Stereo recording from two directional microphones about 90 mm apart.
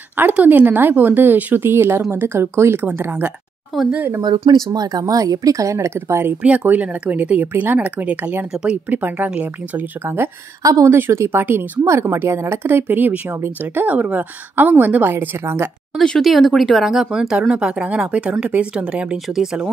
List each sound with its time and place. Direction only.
0.2 s a woman's voice: 20° right (ahead or behind)
4.2 s a woman's voice: 55° right (ahead or behind); by 6.3 s 30° right (ahead or behind)
6.4 s a woman's voice: 15° right (ahead or behind)
10.6 s speech: 40° right (ahead or behind)
10.9 s a woman's voice: 30° right (ahead or behind)
16.0 s speech: 5° left (ahead or behind)